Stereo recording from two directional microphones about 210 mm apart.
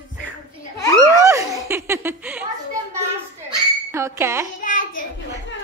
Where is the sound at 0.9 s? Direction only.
15° right (ahead or behind).